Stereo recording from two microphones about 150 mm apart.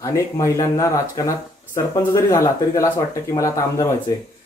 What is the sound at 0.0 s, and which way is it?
Speech, 20° left (ahead or behind).